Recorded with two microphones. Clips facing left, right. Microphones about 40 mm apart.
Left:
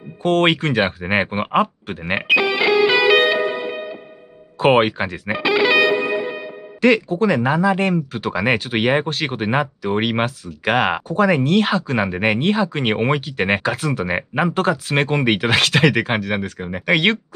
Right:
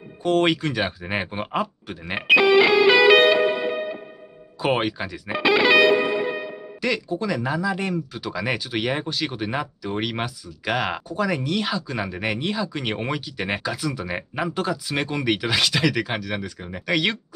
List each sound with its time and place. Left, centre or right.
0.2 s speech: left
2.2 s music: centre
4.6 s speech: left
5.3 s music: centre
6.8 s speech: left